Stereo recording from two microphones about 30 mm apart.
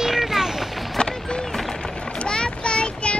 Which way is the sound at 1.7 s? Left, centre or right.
Left.